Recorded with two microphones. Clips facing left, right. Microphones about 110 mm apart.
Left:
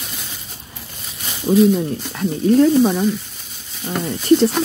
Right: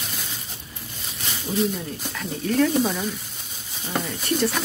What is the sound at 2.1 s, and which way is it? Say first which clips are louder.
Speech: left 8 dB; 25° left (ahead or behind).